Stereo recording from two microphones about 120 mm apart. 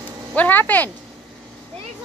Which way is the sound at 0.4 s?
15° left (ahead or behind).